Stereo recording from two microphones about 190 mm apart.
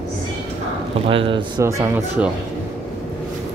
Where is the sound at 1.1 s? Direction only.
25° right (ahead or behind).